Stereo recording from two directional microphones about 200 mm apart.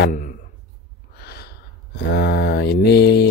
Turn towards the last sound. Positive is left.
turn(degrees=55)  # may be behind; listen again after turning